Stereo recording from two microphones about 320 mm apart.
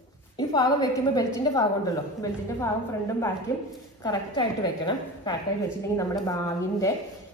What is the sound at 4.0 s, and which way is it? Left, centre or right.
A woman's voice, centre.